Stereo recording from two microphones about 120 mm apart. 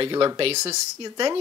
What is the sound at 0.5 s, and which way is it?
Speech, 65° right (ahead or behind).